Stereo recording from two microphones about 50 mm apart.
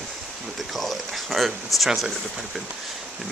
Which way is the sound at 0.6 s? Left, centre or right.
Centre.